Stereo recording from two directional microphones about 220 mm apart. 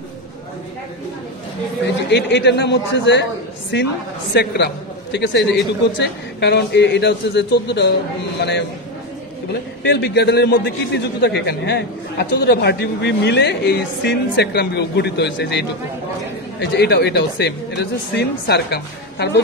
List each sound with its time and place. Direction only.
2.0 s a man's voice: 50° left (ahead or behind)